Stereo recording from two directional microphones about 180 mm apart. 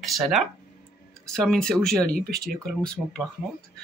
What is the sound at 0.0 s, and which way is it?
Speech, centre (ahead or behind).